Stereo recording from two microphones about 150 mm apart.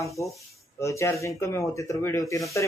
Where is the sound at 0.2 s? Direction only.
20° left (ahead or behind).